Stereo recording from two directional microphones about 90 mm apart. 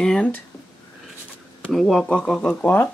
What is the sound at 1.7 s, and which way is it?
Speech, centre (ahead or behind).